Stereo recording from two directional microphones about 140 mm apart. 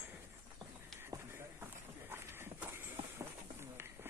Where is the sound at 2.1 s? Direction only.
15° right (ahead or behind).